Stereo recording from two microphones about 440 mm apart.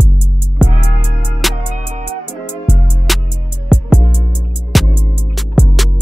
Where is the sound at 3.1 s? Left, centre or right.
Centre.